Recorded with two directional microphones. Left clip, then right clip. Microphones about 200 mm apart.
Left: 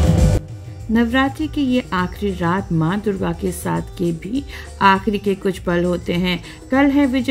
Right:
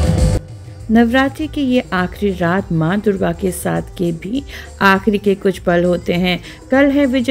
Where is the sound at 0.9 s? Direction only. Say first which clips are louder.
Right 4 dB; 25° right (ahead or behind).